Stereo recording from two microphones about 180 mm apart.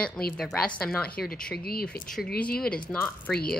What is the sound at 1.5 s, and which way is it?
Speech, 55° left (ahead or behind).